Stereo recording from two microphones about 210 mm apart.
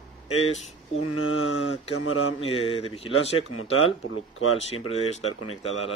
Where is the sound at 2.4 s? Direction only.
25° left (ahead or behind).